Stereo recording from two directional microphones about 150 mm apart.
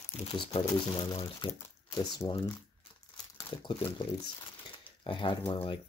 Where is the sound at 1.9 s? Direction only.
25° left (ahead or behind).